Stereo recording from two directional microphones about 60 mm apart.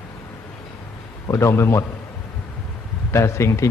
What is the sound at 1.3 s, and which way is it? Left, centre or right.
Speech, left.